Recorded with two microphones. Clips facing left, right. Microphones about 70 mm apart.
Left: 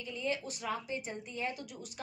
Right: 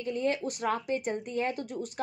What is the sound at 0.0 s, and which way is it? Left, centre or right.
A woman's voice, right.